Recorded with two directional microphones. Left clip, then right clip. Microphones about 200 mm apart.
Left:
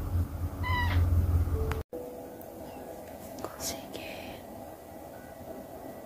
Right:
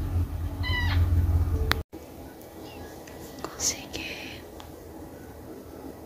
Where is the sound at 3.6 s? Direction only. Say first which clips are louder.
Right 6 dB; 5° left (ahead or behind).